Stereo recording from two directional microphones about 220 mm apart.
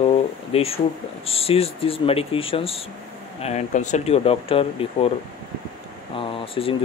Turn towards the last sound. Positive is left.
turn(degrees=25)  # may be behind; listen again after turning